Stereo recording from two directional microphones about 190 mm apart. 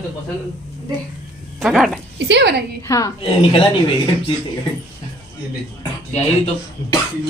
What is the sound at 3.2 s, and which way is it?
Speech, 25° left (ahead or behind).